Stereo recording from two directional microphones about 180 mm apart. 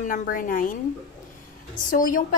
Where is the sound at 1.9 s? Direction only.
45° left (ahead or behind).